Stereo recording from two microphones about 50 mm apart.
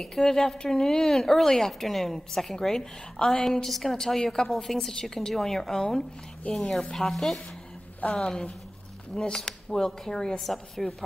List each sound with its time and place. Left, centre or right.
0.0 s a woman's voice: centre
8.0 s a woman's voice: left
9.1 s a woman's voice: centre